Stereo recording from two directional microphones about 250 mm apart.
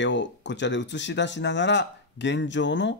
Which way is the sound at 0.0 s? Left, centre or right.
Left.